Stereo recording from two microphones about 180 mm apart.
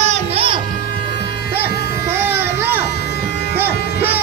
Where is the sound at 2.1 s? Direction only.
15° right (ahead or behind).